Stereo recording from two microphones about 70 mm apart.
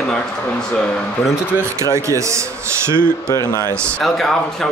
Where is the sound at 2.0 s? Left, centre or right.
Right.